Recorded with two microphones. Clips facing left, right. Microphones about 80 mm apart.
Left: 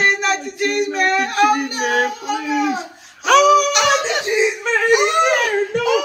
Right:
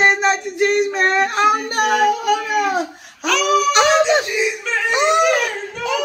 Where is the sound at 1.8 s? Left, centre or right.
Right.